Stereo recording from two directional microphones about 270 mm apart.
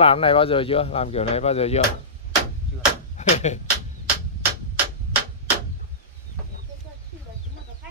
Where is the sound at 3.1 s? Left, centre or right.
Left.